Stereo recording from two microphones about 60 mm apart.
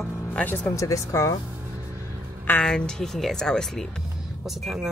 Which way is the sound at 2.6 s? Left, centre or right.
Centre.